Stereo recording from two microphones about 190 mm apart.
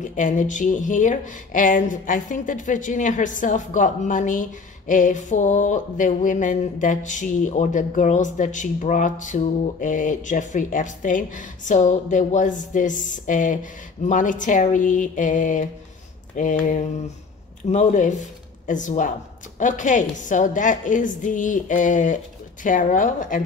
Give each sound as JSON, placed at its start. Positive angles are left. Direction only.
{"t": 0.0, "sound": "a woman's voice", "side_deg": 45}